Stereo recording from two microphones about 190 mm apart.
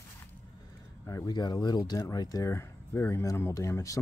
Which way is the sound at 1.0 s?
20° left (ahead or behind).